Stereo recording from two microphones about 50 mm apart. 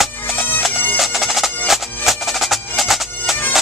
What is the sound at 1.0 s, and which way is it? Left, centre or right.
Music, centre.